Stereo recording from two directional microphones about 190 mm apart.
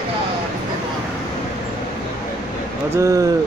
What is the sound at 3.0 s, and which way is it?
Speech, 15° right (ahead or behind).